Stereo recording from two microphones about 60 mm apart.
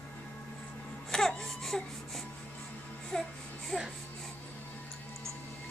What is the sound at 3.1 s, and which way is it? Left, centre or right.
Speech, centre.